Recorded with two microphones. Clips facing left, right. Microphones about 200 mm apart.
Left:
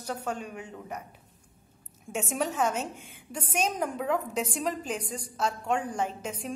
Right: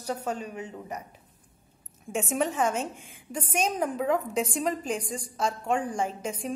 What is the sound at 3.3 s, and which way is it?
A woman's voice, 5° right (ahead or behind).